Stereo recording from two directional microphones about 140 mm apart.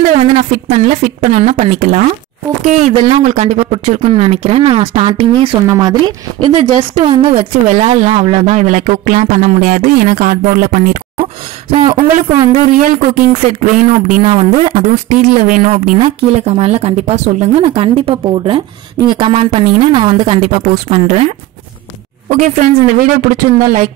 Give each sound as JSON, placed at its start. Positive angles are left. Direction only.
{"t": 0.2, "sound": "speech", "side_deg": -45}
{"t": 2.8, "sound": "a woman's voice", "side_deg": -40}
{"t": 3.3, "sound": "speech", "side_deg": -55}
{"t": 5.7, "sound": "a woman's voice", "side_deg": -30}
{"t": 7.6, "sound": "speech", "side_deg": -55}
{"t": 8.4, "sound": "speech", "side_deg": -60}
{"t": 11.7, "sound": "a woman's voice", "side_deg": -35}
{"t": 12.7, "sound": "speech", "side_deg": -75}
{"t": 13.3, "sound": "speech", "side_deg": -60}
{"t": 14.2, "sound": "speech", "side_deg": -45}
{"t": 15.0, "sound": "speech", "side_deg": -85}
{"t": 15.7, "sound": "a woman's voice", "side_deg": -55}
{"t": 22.3, "sound": "speech", "side_deg": -65}